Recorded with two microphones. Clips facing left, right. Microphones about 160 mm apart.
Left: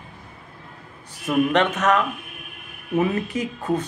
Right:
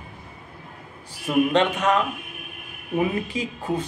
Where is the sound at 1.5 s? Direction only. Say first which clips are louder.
Even; 30° right (ahead or behind).